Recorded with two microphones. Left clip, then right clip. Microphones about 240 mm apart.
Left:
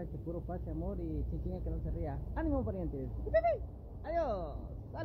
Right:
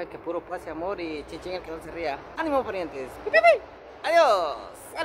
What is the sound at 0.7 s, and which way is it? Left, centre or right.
Speech, centre.